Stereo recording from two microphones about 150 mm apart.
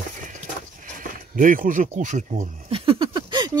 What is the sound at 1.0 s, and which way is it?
Speech, 65° right (ahead or behind).